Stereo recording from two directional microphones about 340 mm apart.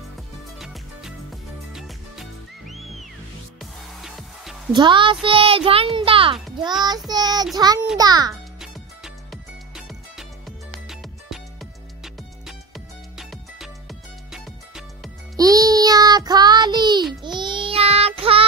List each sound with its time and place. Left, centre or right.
1.7 s music: centre
4.7 s a woman's voice: centre
7.5 s music: centre
15.3 s child singing: centre